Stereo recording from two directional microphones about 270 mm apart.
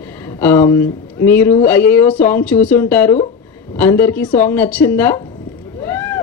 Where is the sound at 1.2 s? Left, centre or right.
Centre.